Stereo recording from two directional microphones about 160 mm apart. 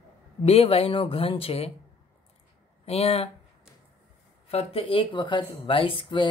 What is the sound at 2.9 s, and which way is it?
Speech, 40° left (ahead or behind).